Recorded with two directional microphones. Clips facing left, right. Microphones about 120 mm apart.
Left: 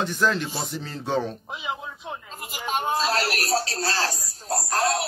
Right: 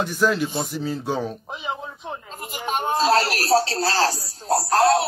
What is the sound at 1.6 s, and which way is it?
Speech, 30° right (ahead or behind).